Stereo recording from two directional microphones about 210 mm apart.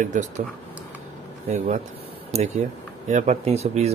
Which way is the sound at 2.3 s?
30° right (ahead or behind).